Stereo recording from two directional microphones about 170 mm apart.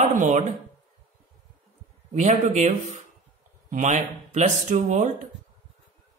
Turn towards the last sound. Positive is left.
turn(degrees=-45)  # may be behind; listen again after turning